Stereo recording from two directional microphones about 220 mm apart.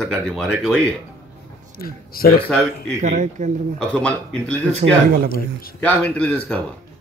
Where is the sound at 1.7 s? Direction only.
40° left (ahead or behind).